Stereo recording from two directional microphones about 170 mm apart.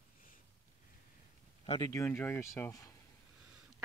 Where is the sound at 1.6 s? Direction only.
30° left (ahead or behind).